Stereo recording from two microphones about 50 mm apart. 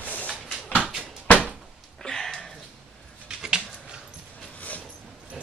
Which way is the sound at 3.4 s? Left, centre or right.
Centre.